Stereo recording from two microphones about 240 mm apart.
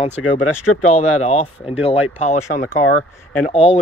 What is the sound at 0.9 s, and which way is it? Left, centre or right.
Speech, left.